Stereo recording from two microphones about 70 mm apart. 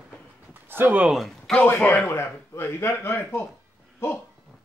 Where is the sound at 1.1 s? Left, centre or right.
Centre.